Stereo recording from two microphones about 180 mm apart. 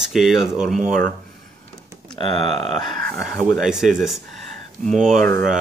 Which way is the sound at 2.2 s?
30° left (ahead or behind).